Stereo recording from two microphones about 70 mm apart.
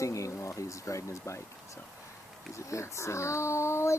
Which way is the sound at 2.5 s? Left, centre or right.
Left.